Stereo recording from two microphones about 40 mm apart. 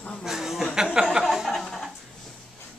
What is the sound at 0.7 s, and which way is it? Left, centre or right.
Speech, centre.